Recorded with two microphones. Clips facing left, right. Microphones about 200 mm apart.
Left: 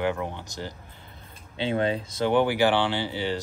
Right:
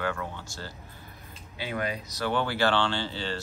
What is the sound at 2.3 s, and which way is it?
Speech, 15° left (ahead or behind).